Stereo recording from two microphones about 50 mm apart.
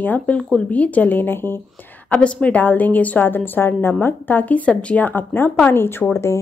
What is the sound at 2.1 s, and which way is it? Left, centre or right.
A woman's voice, left.